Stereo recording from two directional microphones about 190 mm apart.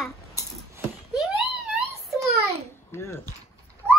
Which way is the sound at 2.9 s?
15° left (ahead or behind).